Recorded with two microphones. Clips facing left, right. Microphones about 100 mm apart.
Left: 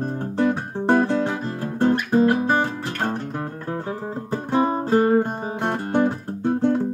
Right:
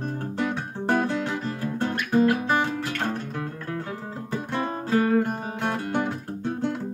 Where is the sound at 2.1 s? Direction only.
30° left (ahead or behind).